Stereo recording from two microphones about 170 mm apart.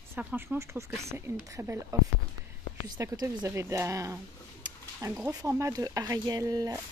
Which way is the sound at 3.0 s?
20° right (ahead or behind).